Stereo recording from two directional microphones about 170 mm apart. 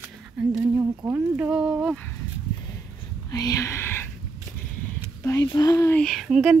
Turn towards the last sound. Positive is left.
turn(degrees=-5)  # may be behind; listen again after turning